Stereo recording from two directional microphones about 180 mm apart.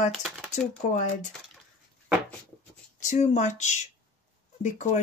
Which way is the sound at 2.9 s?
40° left (ahead or behind).